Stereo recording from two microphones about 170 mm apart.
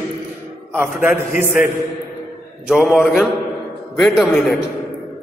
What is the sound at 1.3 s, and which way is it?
Speech, 50° left (ahead or behind).